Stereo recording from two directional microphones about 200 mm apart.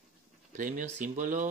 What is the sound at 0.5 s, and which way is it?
Speech, 40° right (ahead or behind).